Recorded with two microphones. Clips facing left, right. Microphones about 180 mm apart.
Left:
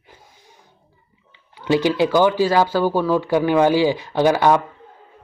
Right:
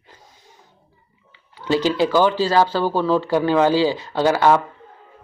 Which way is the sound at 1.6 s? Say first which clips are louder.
Left 1 dB; 15° left (ahead or behind).